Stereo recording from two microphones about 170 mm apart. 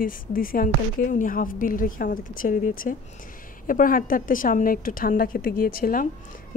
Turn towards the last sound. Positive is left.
turn(degrees=60)  # may be behind; listen again after turning